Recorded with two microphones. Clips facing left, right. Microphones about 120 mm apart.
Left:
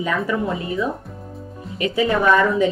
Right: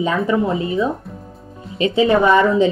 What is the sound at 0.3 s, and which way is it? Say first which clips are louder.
A woman's voice: right 5 dB; 25° right (ahead or behind).